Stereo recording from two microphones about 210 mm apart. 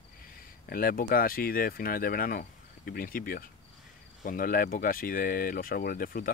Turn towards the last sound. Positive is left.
turn(degrees=40)  # may be behind; listen again after turning